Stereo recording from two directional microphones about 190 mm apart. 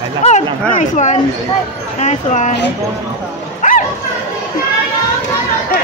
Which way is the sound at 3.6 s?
40° left (ahead or behind).